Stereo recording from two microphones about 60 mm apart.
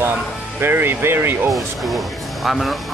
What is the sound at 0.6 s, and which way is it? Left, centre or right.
Speech, right.